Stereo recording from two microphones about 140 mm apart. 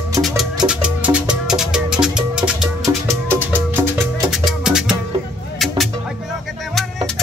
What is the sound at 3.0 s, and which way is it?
Music, 15° right (ahead or behind).